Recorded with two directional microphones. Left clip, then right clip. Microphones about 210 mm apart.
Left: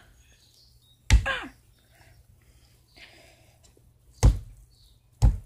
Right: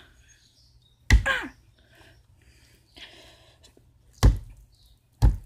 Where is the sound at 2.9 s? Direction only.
15° right (ahead or behind).